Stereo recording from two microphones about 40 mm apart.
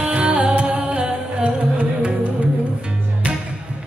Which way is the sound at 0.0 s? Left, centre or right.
Right.